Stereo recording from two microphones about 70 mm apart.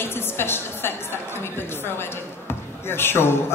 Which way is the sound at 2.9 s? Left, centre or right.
Left.